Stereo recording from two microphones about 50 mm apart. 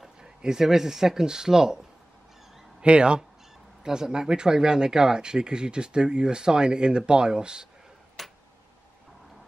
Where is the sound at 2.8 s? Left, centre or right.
Centre.